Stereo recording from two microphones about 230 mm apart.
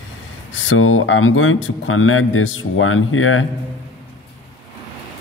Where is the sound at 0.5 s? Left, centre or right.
Left.